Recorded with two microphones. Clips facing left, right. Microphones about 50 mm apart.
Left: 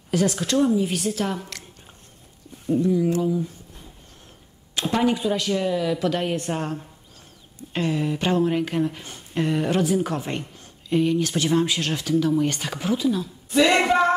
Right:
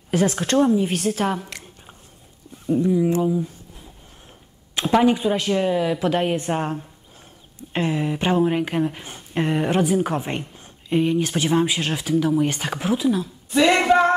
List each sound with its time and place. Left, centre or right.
0.1 s a woman's voice: right
1.2 s a sound: right
2.7 s speech: centre
4.8 s speech: right
13.8 s music: centre